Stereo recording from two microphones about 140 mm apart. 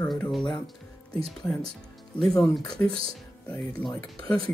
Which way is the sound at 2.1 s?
5° left (ahead or behind).